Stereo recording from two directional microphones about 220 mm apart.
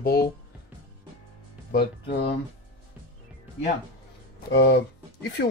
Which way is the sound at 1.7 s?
50° left (ahead or behind).